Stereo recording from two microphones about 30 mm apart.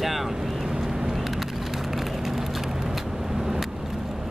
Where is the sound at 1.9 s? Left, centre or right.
Centre.